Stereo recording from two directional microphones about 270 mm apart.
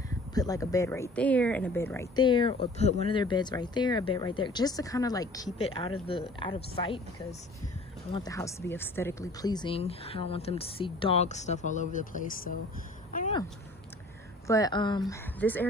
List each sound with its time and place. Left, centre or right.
0.3 s a woman's voice: centre; by 12.5 s left
14.5 s speech: centre